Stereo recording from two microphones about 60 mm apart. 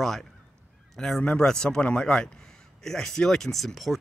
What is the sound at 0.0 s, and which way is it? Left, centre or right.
Honk, centre.